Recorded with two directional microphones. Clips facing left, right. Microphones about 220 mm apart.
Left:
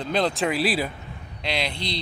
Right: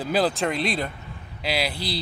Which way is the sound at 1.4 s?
5° right (ahead or behind).